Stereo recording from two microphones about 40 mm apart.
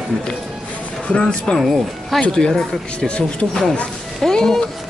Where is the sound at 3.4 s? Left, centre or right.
Left.